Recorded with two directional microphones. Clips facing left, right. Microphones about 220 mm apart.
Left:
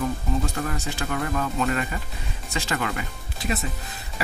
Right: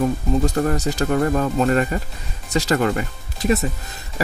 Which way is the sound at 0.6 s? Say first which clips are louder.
Right 9 dB; 40° right (ahead or behind).